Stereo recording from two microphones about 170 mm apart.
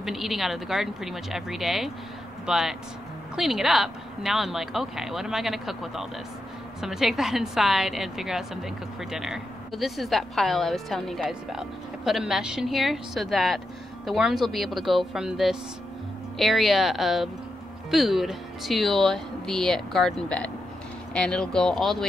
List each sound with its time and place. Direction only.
0.0 s a woman's voice: centre (ahead or behind)